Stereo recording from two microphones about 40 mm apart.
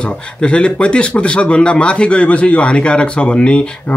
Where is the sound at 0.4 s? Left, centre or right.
Left.